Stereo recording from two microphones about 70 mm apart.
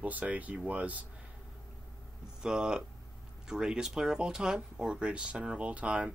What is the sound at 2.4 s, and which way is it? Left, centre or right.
Speech, centre.